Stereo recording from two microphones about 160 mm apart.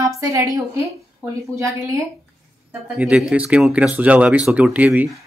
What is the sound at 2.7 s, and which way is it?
Speech, 5° right (ahead or behind).